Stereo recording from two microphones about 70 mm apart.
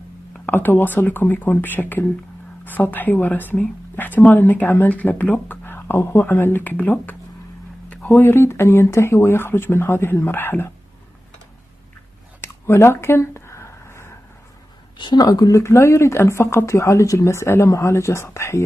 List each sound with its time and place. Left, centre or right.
0.5 s speech: left
7.9 s a sound: centre
8.3 s speech: left
12.4 s a sound: left
15.0 s speech: left
15.6 s speech: left